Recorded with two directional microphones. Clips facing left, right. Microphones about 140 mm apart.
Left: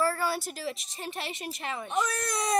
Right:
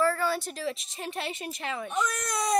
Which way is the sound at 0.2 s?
5° left (ahead or behind).